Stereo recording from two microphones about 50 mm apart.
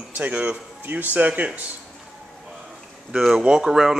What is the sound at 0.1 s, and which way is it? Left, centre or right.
Speech, right.